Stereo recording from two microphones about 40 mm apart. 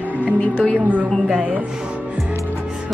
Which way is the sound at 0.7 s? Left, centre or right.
Right.